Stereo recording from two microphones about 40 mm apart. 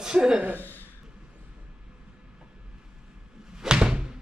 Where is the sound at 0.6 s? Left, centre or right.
Left.